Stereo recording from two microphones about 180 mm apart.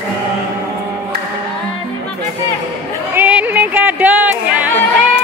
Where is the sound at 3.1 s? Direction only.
10° right (ahead or behind).